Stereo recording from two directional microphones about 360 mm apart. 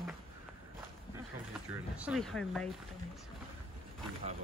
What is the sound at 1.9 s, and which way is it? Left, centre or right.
Speech, centre.